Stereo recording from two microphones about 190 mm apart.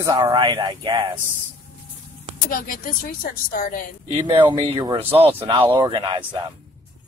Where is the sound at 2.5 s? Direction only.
50° left (ahead or behind).